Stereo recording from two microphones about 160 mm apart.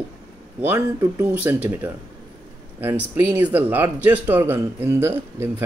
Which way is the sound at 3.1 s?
10° right (ahead or behind).